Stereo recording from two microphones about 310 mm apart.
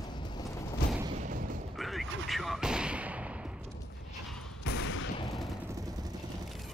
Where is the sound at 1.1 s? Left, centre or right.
Right.